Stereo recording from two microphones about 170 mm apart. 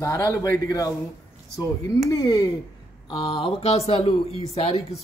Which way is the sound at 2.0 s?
20° left (ahead or behind).